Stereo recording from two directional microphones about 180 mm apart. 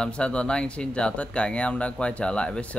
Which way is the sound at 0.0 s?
5° left (ahead or behind).